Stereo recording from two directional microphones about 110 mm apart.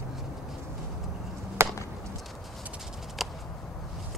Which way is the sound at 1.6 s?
25° right (ahead or behind).